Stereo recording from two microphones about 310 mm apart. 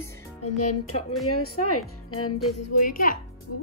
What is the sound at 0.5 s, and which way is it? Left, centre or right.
Speech, left.